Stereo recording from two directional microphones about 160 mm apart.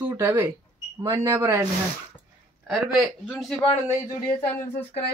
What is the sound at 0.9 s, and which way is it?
Speech, 15° right (ahead or behind).